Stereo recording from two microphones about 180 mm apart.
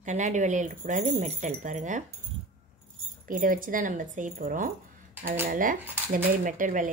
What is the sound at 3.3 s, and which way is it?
Speech, 50° right (ahead or behind).